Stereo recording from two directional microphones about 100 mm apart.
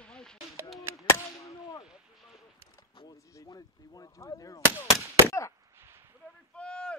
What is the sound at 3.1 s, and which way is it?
Speech, 35° left (ahead or behind).